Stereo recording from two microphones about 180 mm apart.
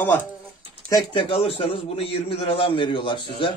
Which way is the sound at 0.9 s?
25° left (ahead or behind).